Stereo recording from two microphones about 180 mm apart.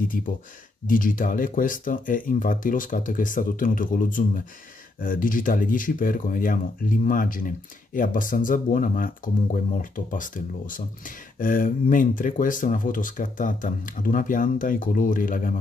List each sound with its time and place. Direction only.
0.2 s speech: 50° left (ahead or behind)